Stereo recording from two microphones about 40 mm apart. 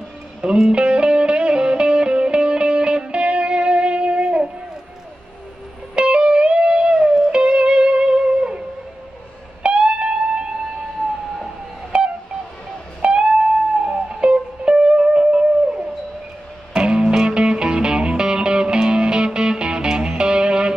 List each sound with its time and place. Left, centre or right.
0.4 s music: right
5.9 s music: right
13.0 s music: right